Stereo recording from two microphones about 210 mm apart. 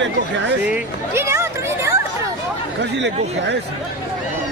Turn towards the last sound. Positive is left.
turn(degrees=-55)  # may be behind; listen again after turning